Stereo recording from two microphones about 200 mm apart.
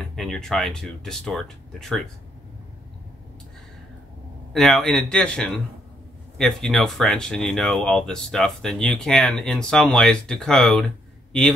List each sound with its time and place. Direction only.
0.1 s speech: centre (ahead or behind)
4.5 s speech: centre (ahead or behind)